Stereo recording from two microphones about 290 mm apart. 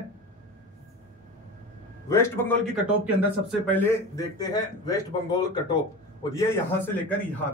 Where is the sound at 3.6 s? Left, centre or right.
Centre.